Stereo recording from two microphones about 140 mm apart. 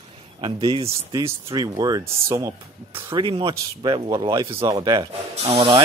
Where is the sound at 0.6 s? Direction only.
30° right (ahead or behind).